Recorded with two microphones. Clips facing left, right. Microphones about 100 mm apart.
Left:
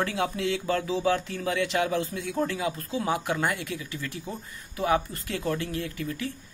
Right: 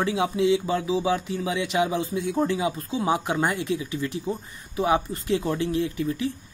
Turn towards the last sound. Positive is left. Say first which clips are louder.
# right 6 dB
turn(degrees=-20)  # may be behind; listen again after turning